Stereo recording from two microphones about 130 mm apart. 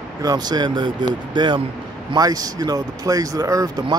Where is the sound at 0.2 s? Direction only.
30° right (ahead or behind).